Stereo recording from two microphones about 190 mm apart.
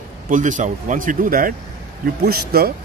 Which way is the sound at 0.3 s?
40° right (ahead or behind).